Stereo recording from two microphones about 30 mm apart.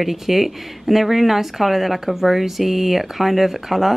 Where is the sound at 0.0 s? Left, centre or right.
Centre.